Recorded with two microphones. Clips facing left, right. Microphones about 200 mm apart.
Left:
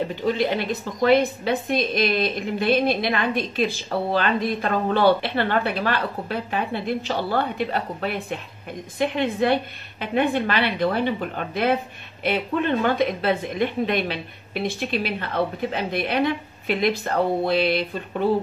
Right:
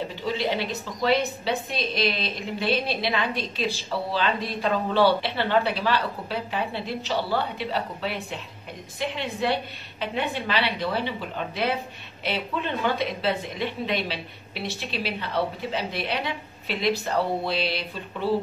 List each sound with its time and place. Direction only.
0.1 s a woman's voice: 50° left (ahead or behind)